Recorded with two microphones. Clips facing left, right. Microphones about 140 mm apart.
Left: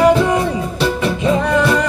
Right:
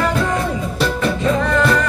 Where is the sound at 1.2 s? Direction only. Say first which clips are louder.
Left 2 dB; 15° left (ahead or behind).